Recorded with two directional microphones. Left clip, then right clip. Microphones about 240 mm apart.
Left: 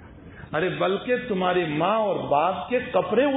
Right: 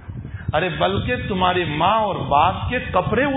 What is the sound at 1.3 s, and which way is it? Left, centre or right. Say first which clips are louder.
A man's voice: right 8 dB; right.